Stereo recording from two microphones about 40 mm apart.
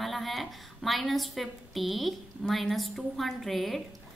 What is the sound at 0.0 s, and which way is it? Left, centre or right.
A woman's voice, centre.